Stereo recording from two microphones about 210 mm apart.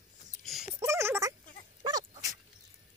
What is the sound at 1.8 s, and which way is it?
Dog, 20° right (ahead or behind).